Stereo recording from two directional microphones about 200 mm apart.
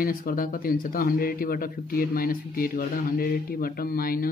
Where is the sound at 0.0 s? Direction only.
45° left (ahead or behind).